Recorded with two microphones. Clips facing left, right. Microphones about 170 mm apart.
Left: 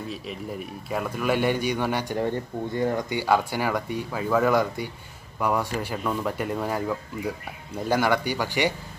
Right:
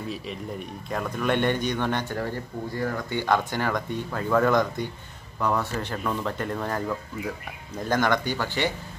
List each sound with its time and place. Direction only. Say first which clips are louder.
0.8 s speech: left 1 dB; 5° left (ahead or behind)
2.1 s speech: left 4 dB; 20° left (ahead or behind)